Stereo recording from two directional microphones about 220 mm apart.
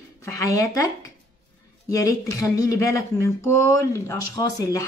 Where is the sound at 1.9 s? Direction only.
15° left (ahead or behind).